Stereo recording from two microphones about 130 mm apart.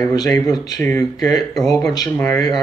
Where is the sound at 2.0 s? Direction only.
15° left (ahead or behind).